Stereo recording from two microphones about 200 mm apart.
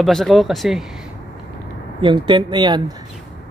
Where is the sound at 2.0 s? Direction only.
25° right (ahead or behind).